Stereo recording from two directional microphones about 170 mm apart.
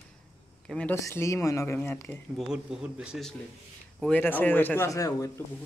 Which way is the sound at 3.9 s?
5° left (ahead or behind).